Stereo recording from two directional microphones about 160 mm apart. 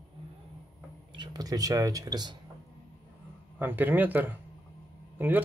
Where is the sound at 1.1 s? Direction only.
25° right (ahead or behind).